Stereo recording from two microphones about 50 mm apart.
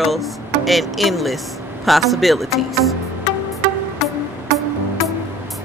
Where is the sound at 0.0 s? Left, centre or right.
Centre.